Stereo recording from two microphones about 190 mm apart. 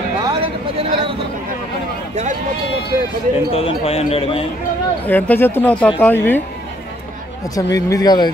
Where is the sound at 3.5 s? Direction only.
30° left (ahead or behind).